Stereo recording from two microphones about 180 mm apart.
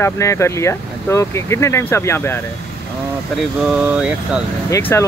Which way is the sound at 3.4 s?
5° right (ahead or behind).